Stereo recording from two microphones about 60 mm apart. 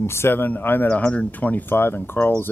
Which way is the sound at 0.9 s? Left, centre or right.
Left.